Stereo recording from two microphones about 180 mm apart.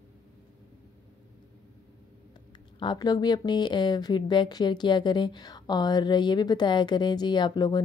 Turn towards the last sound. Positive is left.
turn(degrees=25)  # may be behind; listen again after turning